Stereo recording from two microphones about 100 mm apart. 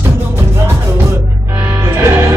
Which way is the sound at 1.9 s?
25° right (ahead or behind).